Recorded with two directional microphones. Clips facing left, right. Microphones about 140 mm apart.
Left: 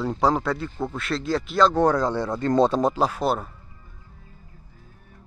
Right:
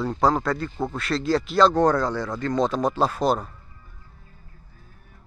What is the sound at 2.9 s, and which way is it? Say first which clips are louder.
Speech: right 1 dB; 10° left (ahead or behind).